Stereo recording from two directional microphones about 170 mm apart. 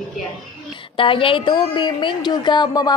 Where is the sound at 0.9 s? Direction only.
30° left (ahead or behind).